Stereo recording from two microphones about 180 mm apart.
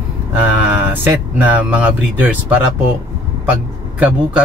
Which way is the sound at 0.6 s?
10° right (ahead or behind).